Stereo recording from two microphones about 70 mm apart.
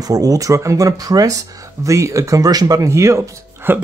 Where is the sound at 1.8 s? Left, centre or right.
Right.